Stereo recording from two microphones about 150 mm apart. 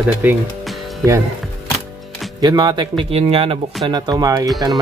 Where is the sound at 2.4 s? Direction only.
30° right (ahead or behind).